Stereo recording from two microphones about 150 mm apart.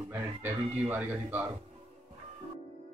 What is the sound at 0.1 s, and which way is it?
Speech, 15° right (ahead or behind).